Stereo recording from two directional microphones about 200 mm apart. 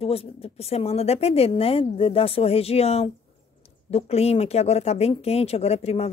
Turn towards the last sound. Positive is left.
turn(degrees=30)  # may be behind; listen again after turning